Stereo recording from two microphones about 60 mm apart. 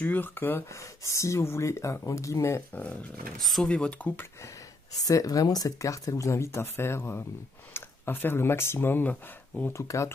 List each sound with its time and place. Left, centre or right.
0.0 s speech: left
0.7 s speech: left
2.0 s speech: left
2.7 s speech: left
3.3 s speech: centre
3.6 s speech: centre
5.0 s speech: left
9.7 s speech: left